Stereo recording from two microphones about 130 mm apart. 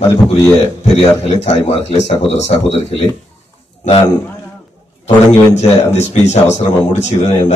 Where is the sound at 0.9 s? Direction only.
50° left (ahead or behind).